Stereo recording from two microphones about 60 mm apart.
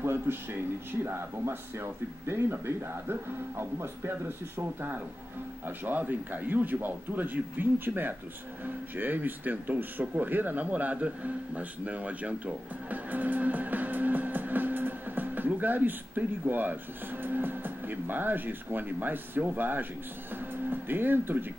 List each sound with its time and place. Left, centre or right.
0.0 s speech: right